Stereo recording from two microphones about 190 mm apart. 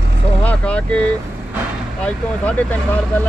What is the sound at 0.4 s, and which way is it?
Vehicle, 5° left (ahead or behind).